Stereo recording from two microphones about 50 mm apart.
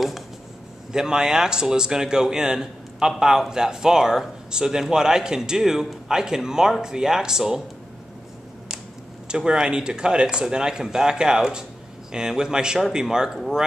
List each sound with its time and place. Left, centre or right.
0.9 s a man's voice: centre
9.3 s a man's voice: centre